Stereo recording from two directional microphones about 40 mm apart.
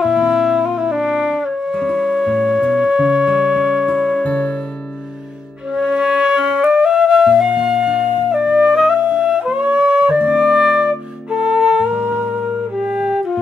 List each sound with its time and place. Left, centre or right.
0.0 s music: centre
2.0 s music: centre
2.8 s music: centre
4.2 s music: left
5.8 s music: centre
10.4 s music: centre
12.9 s music: centre